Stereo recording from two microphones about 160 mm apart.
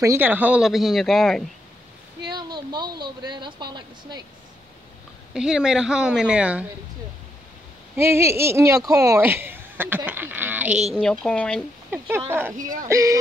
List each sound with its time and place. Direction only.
0.0 s speech: 15° right (ahead or behind); by 1.5 s centre (ahead or behind)
2.2 s speech: 25° right (ahead or behind)
5.3 s speech: 5° right (ahead or behind)
7.9 s speech: 15° right (ahead or behind)
11.0 s speech: 5° left (ahead or behind)
12.3 s speech: 15° right (ahead or behind)
12.5 s speech: 55° right (ahead or behind)
12.8 s speech: 20° right (ahead or behind)